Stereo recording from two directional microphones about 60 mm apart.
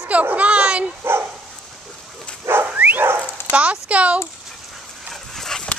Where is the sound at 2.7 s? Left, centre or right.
Right.